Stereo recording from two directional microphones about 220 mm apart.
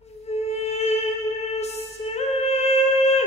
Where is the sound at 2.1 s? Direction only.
30° left (ahead or behind).